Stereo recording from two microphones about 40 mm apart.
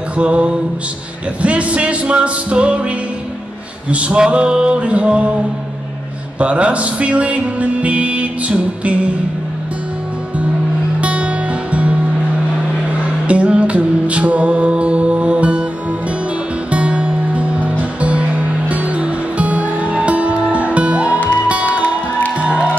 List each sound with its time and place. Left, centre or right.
0.2 s music: right
3.9 s music: right
6.4 s music: right
11.0 s music: right
13.3 s music: right
16.7 s music: right